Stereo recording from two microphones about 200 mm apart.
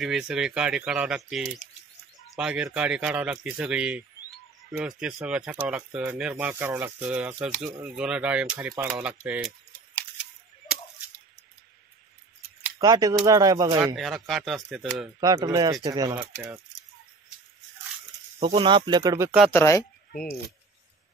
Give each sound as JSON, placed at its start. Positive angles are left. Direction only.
{"t": 0.0, "sound": "speech", "side_deg": -5}
{"t": 12.7, "sound": "speech", "side_deg": -20}
{"t": 13.9, "sound": "speech", "side_deg": 0}
{"t": 15.1, "sound": "speech", "side_deg": -20}
{"t": 18.4, "sound": "speech", "side_deg": -25}
{"t": 19.5, "sound": "speech", "side_deg": 15}
{"t": 20.1, "sound": "keys jangling", "side_deg": 45}